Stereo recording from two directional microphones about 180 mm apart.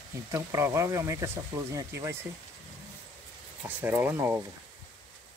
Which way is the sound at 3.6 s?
10° right (ahead or behind).